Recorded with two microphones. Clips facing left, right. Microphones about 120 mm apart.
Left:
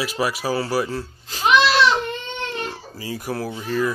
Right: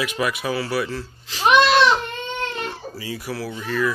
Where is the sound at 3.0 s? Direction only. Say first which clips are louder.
Left 3 dB; 45° left (ahead or behind).